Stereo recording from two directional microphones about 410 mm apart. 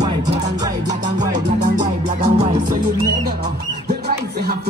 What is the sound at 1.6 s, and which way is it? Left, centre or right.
Music, centre.